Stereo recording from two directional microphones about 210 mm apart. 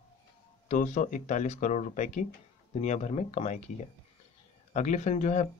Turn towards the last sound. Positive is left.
turn(degrees=35)  # may be behind; listen again after turning